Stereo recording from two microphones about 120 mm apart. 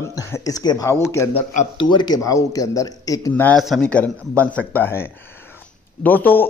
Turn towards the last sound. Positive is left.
turn(degrees=15)  # may be behind; listen again after turning